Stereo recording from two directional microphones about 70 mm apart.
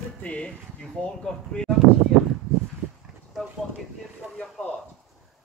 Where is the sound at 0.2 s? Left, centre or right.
Centre.